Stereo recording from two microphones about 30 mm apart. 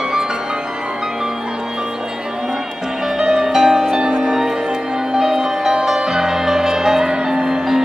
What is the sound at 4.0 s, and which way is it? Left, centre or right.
Music, right.